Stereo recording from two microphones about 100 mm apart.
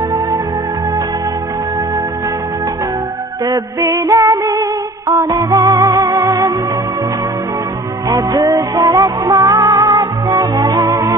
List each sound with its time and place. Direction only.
3.4 s music: 35° right (ahead or behind)
8.1 s music: 35° right (ahead or behind)